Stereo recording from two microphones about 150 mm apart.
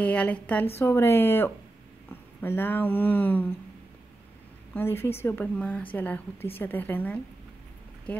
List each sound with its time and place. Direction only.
0.0 s speech: 10° left (ahead or behind)
4.7 s speech: 15° left (ahead or behind)